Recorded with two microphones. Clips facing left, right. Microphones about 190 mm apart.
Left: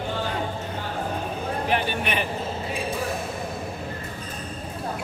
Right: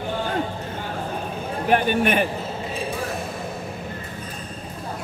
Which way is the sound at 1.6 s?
50° right (ahead or behind).